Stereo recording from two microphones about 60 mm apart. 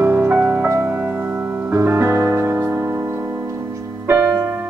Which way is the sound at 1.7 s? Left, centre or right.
Right.